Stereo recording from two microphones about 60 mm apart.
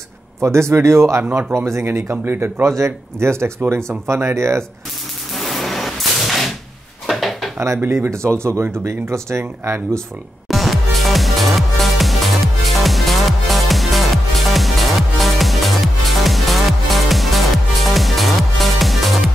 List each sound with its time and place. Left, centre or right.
0.4 s speech: right
1.9 s speech: right
2.8 s speech: right
5.3 s a sound: centre
7.1 s drawer open or close: centre
7.8 s speech: right
8.2 s speech: right
10.5 s music: centre